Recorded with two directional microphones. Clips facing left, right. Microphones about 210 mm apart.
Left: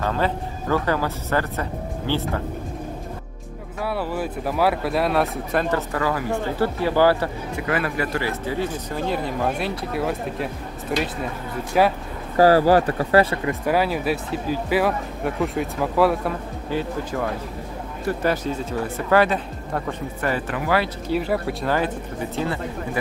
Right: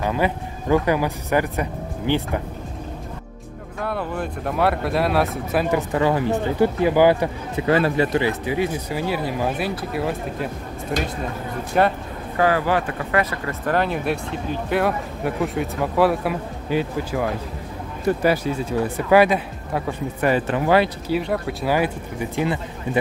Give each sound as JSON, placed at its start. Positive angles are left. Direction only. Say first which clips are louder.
{"t": 0.0, "sound": "speech", "louder": "right 1 dB", "side_deg": -15}
{"t": 3.8, "sound": "speech", "louder": "left 1 dB", "side_deg": 5}
{"t": 5.9, "sound": "speech", "louder": "right 4 dB", "side_deg": -25}
{"t": 12.4, "sound": "speech", "louder": "left 5 dB", "side_deg": 35}
{"t": 13.5, "sound": "speech", "louder": "left 1 dB", "side_deg": 10}
{"t": 21.1, "sound": "speech", "louder": "even", "side_deg": 0}
{"t": 21.7, "sound": "speech", "louder": "right 2 dB", "side_deg": -15}